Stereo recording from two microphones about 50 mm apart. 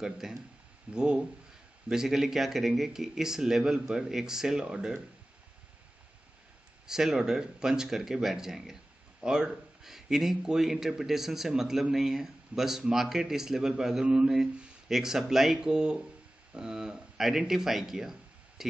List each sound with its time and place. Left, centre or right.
0.0 s speech: centre
6.9 s speech: centre